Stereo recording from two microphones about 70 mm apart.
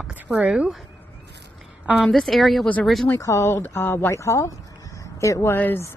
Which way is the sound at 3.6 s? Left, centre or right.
Left.